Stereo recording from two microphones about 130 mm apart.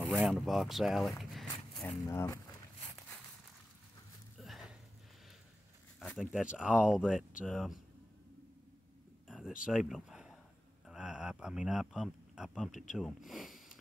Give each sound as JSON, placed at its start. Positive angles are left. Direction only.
{"t": 0.0, "sound": "speech", "side_deg": -5}
{"t": 2.0, "sound": "speech", "side_deg": 20}
{"t": 4.4, "sound": "a sound", "side_deg": 0}
{"t": 5.9, "sound": "speech", "side_deg": 0}
{"t": 9.7, "sound": "speech", "side_deg": -5}